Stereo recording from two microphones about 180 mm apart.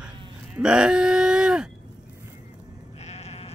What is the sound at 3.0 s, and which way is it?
Sheep, 35° left (ahead or behind).